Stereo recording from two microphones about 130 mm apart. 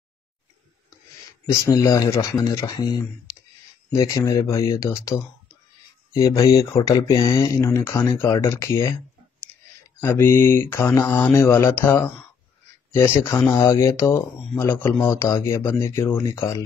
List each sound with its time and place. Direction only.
1.4 s speech: 25° left (ahead or behind)
9.9 s speech: 20° left (ahead or behind)